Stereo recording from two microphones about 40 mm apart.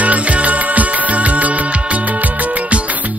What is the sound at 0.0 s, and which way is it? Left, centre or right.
Music, right.